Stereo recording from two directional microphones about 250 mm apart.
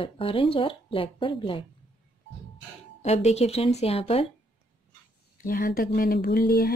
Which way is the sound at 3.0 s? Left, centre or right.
Left.